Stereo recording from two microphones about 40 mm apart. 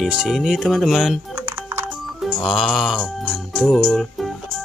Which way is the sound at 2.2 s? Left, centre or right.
Centre.